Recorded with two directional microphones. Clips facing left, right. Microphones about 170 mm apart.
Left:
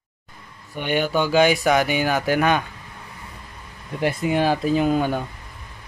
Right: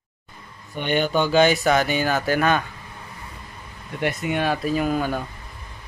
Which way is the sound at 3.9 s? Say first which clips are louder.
Left 3 dB; 30° left (ahead or behind).